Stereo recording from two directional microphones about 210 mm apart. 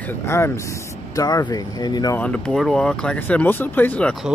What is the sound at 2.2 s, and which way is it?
Speech, 5° left (ahead or behind).